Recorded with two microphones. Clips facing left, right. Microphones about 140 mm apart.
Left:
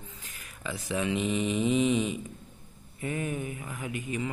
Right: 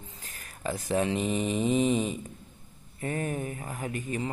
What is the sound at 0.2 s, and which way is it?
Speech, 40° right (ahead or behind).